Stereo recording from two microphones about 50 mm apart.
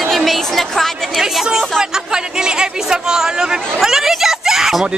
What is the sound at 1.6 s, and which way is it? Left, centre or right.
Chatter, centre.